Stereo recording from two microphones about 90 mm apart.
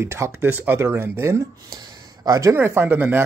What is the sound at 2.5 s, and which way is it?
Speech, 25° right (ahead or behind).